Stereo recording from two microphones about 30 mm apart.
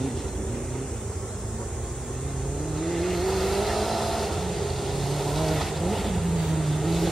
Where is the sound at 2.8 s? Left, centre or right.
Centre.